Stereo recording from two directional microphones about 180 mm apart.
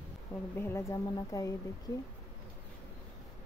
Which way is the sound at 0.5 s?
15° left (ahead or behind).